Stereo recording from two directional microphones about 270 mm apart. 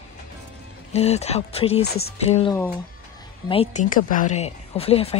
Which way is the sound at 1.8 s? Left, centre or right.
Left.